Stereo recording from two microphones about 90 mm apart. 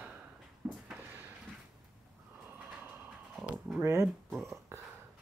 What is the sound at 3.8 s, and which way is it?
Speech, 30° right (ahead or behind).